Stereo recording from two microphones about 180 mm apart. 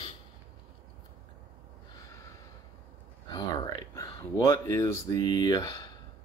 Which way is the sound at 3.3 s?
20° left (ahead or behind).